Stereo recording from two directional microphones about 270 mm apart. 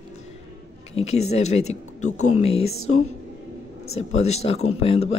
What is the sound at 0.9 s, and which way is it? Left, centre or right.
Speech, left.